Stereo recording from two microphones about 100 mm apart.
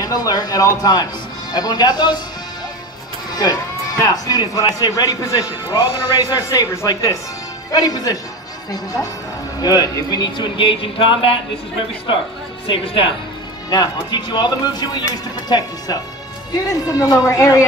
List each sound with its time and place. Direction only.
0.0 s a man's voice: 40° left (ahead or behind)
3.3 s a man's voice: 40° left (ahead or behind); by 11.3 s 60° left (ahead or behind)
12.6 s a woman's voice: 60° left (ahead or behind)
13.7 s a man's voice: 45° left (ahead or behind)